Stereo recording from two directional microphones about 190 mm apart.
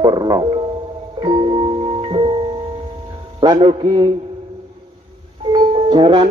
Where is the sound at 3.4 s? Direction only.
25° right (ahead or behind).